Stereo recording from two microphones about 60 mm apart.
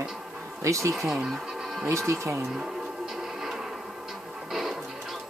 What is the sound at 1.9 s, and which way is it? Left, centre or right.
Speech, right.